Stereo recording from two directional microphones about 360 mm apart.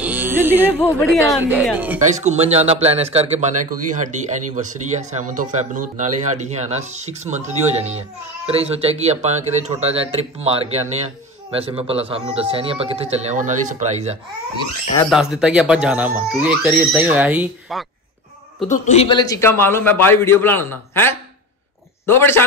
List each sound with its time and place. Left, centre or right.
0.0 s music: centre
0.7 s speech: centre
2.0 s speech: centre
15.0 s speech: centre
18.7 s a man's voice: centre